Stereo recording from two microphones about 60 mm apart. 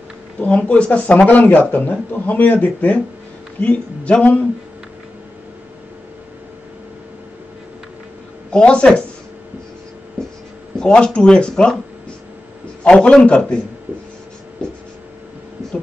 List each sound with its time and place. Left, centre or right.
0.4 s speech: left
8.5 s speech: centre
10.8 s speech: centre
12.8 s speech: centre